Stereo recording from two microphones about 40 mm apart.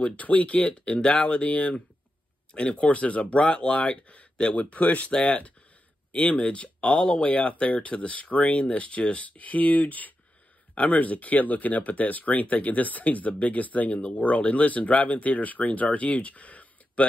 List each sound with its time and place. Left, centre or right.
0.0 s speech: left